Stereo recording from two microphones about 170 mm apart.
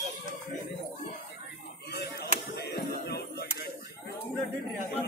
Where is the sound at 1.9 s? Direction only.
70° left (ahead or behind).